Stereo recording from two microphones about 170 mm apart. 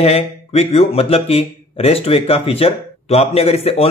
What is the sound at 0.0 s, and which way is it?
Speech, 35° left (ahead or behind).